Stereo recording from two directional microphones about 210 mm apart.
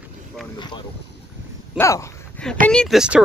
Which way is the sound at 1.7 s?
15° left (ahead or behind).